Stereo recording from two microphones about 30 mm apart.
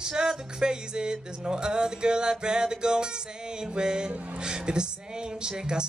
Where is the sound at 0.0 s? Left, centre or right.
Right.